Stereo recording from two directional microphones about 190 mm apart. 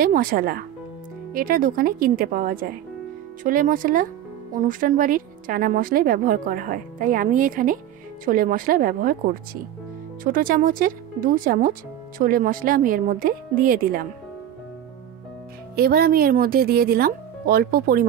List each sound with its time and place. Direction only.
0.0 s a woman's voice: 50° right (ahead or behind)
15.7 s a woman's voice: 55° right (ahead or behind)